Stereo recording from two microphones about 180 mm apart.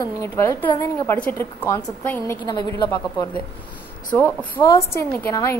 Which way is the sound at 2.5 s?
25° left (ahead or behind).